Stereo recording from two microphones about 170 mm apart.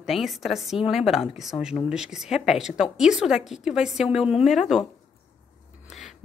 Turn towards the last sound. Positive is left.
turn(degrees=0)  # may be behind; listen again after turning